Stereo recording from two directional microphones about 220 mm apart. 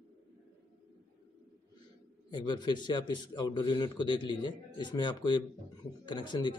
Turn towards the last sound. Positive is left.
turn(degrees=20)  # may be behind; listen again after turning